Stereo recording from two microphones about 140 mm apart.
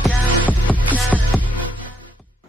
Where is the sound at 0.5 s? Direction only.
10° left (ahead or behind).